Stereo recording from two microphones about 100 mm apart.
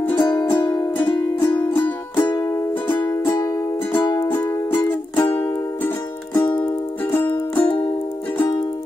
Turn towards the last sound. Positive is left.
turn(degrees=20)  # may be behind; listen again after turning